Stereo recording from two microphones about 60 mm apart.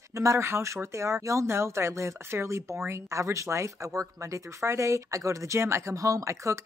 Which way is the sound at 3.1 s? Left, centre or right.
Right.